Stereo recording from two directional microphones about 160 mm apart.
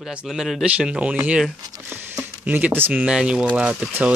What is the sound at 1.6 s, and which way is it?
Speech, 20° right (ahead or behind).